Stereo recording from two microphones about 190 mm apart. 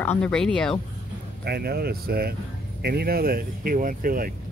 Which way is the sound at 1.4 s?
55° right (ahead or behind).